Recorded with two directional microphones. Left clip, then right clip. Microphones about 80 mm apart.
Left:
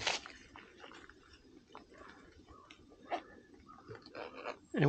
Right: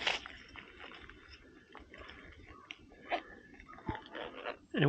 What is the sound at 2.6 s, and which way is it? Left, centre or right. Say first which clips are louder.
Dog: right 8 dB; centre.